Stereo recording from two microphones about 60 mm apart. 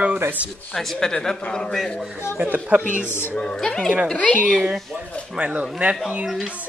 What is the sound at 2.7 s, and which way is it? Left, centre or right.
Speech, right.